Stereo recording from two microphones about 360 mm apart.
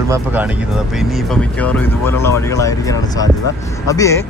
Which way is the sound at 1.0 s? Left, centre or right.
Centre.